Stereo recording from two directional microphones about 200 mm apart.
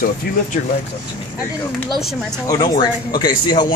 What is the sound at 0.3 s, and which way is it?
Speech, 50° left (ahead or behind).